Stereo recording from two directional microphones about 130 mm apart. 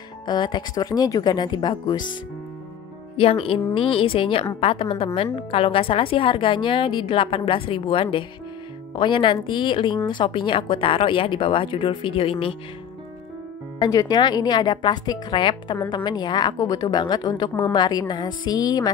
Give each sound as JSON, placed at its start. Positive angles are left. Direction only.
{"t": 0.3, "sound": "a woman's voice", "side_deg": 35}
{"t": 3.2, "sound": "a woman's voice", "side_deg": 45}
{"t": 13.7, "sound": "a woman's voice", "side_deg": 30}